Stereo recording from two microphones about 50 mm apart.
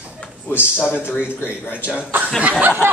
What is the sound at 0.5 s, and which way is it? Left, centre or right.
Speech, left.